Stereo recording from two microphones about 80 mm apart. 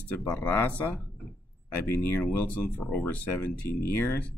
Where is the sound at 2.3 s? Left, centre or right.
Left.